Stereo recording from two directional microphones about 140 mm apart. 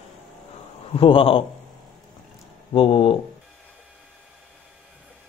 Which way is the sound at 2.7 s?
40° left (ahead or behind).